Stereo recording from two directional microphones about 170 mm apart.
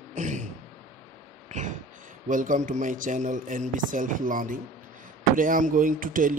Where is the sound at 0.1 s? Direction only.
45° right (ahead or behind).